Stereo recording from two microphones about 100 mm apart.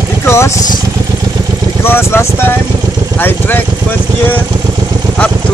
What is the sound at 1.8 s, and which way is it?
Speech, 25° left (ahead or behind).